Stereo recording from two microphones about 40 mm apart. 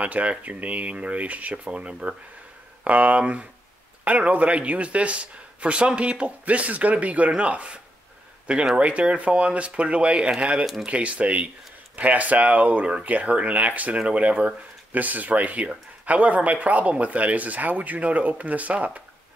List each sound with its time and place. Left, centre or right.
0.0 s speech: right
2.8 s speech: right
10.9 s speech: right